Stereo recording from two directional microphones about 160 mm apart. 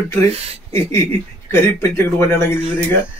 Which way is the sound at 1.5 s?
15° left (ahead or behind).